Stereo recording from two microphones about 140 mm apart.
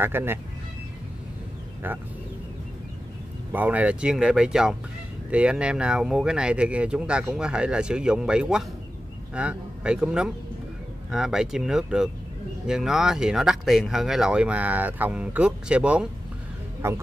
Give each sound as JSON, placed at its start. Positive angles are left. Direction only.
{"t": 0.0, "sound": "speech", "side_deg": -15}
{"t": 1.8, "sound": "speech", "side_deg": -15}
{"t": 3.5, "sound": "speech", "side_deg": -10}
{"t": 16.8, "sound": "speech", "side_deg": -20}